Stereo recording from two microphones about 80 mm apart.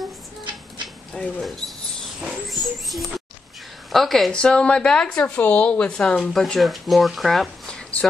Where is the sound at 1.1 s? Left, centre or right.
Centre.